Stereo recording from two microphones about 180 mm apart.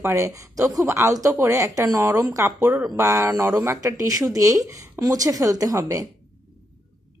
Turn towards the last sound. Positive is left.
turn(degrees=-20)  # may be behind; listen again after turning